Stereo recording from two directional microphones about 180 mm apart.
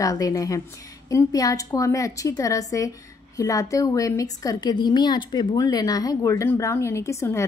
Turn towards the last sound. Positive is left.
turn(degrees=15)  # may be behind; listen again after turning